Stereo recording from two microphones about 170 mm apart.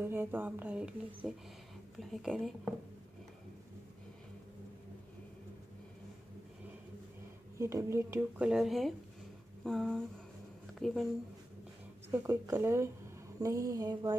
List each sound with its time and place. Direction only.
0.0 s a woman's voice: 15° right (ahead or behind)
7.5 s speech: 15° right (ahead or behind); by 11.1 s centre (ahead or behind)
12.1 s speech: 15° right (ahead or behind)
13.4 s a sound: 20° right (ahead or behind)